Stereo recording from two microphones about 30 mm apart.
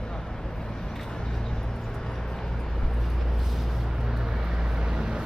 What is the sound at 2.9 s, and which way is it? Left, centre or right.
Vehicle, centre.